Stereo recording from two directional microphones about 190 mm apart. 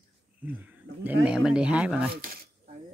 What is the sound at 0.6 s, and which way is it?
Speech, 10° right (ahead or behind).